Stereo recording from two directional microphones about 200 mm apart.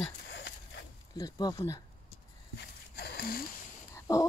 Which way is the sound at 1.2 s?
20° left (ahead or behind).